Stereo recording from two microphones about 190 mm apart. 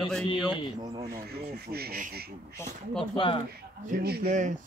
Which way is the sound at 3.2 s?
25° left (ahead or behind).